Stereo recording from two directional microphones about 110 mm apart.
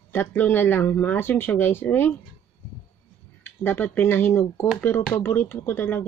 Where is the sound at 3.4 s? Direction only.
20° left (ahead or behind).